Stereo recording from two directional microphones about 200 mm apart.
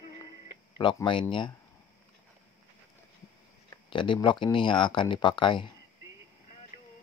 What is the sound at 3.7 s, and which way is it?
Speech, 25° left (ahead or behind).